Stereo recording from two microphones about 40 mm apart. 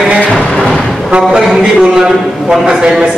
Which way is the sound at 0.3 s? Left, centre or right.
Left.